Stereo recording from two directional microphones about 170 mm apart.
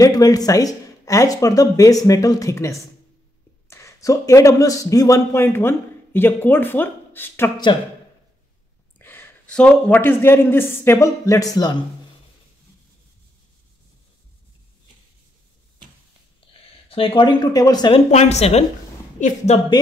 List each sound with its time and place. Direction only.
0.0 s speech: 20° left (ahead or behind)
8.9 s speech: 10° left (ahead or behind)
16.9 s speech: 30° left (ahead or behind)
18.1 s a woman's voice: 40° left (ahead or behind)